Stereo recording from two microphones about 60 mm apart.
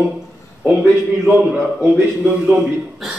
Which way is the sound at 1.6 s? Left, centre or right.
Right.